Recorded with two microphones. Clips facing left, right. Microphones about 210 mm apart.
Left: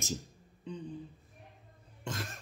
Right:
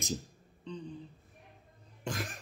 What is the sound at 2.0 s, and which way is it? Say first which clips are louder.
Speech: right 2 dB; 20° right (ahead or behind).